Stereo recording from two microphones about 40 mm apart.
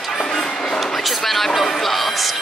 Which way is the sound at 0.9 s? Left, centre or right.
Centre.